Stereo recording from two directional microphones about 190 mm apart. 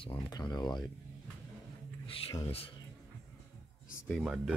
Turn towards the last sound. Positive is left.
turn(degrees=0)  # may be behind; listen again after turning